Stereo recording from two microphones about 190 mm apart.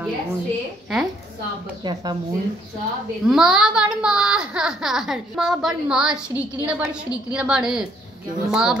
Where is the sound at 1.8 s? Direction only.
25° right (ahead or behind).